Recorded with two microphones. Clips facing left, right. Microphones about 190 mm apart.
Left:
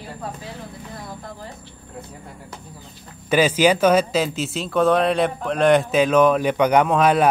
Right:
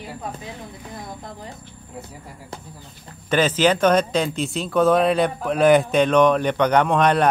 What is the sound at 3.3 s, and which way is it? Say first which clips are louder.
Speech: left 2 dB; 10° left (ahead or behind).